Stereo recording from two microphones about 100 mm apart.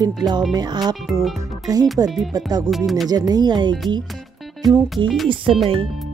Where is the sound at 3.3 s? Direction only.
45° right (ahead or behind).